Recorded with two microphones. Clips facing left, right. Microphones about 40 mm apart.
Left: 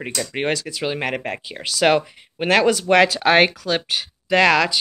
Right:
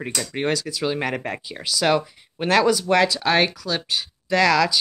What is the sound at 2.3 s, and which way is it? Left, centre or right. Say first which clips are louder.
Speech: left 1 dB; left.